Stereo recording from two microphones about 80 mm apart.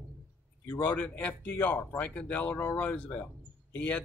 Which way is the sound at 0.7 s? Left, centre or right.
Left.